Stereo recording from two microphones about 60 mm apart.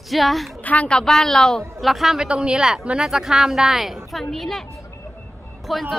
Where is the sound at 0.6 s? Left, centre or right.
Left.